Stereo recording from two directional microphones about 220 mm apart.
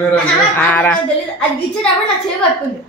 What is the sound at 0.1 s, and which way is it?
Speech, 5° left (ahead or behind).